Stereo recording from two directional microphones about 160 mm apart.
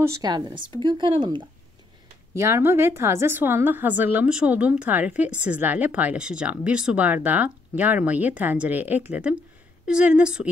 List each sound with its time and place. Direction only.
0.0 s speech: 20° right (ahead or behind)
2.3 s a woman's voice: 15° right (ahead or behind)